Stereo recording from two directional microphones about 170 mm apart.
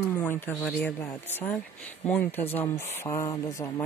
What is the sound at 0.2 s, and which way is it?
Speech, 10° left (ahead or behind).